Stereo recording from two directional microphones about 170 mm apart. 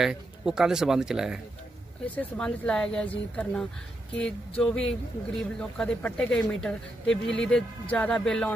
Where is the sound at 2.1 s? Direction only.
5° left (ahead or behind).